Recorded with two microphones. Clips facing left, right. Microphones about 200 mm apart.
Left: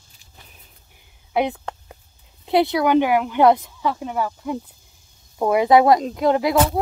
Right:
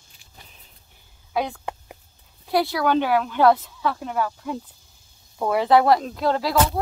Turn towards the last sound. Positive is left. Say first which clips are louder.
# left 4 dB
turn(degrees=20)  # may be behind; listen again after turning